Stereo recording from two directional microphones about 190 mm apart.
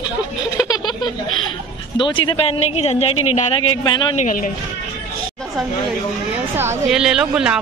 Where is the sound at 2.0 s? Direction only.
25° left (ahead or behind).